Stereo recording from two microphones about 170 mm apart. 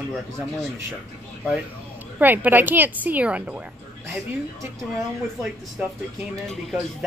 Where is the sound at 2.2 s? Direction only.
10° right (ahead or behind).